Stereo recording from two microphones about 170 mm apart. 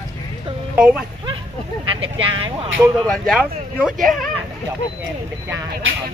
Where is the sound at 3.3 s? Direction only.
5° right (ahead or behind).